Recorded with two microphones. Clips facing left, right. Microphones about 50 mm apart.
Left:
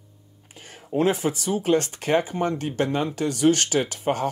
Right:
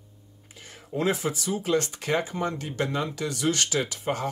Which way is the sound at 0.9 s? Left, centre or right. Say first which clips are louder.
Left 4 dB; left.